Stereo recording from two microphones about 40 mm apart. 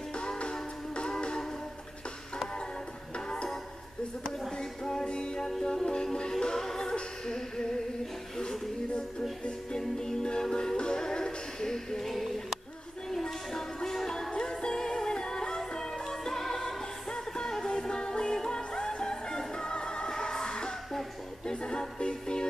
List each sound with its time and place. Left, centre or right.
0.1 s music: left
4.2 s music: centre
12.1 s a sound: centre
13.1 s music: centre